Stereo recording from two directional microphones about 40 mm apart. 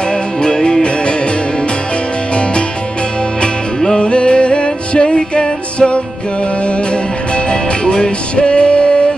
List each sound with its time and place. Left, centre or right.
0.4 s music: left
3.8 s music: left
7.8 s music: left